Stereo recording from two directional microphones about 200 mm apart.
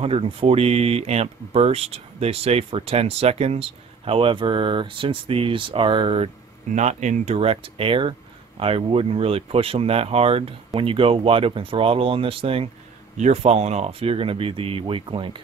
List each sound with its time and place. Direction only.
0.0 s speech: 30° right (ahead or behind)